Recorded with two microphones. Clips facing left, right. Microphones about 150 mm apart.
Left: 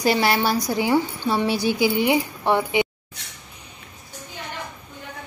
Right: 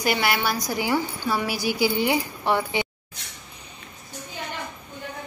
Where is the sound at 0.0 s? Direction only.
35° left (ahead or behind).